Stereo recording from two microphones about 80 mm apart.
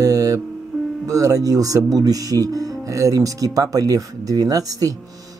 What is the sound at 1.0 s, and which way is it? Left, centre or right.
Speech, right.